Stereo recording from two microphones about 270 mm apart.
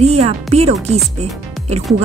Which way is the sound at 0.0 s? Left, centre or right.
Right.